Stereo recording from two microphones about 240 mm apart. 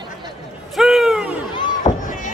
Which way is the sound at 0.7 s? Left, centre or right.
Centre.